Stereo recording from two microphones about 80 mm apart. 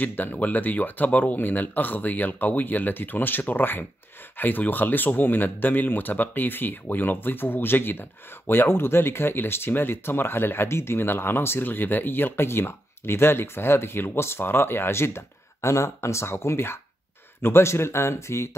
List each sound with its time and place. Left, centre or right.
0.0 s speech: left